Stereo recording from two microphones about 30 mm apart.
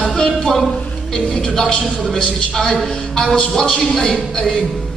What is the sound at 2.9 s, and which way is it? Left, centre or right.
A woman's voice, left.